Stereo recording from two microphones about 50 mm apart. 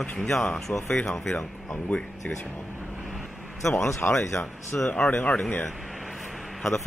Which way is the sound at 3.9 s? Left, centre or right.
Left.